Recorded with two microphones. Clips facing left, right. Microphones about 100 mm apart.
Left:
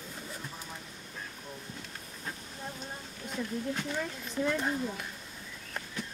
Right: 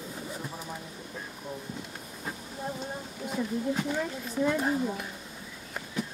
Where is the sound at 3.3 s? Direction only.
10° right (ahead or behind).